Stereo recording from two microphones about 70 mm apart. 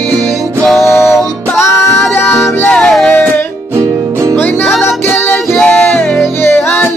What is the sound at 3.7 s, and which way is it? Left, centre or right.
Music, right.